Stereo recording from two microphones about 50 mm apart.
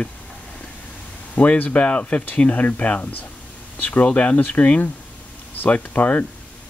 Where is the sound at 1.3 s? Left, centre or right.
Left.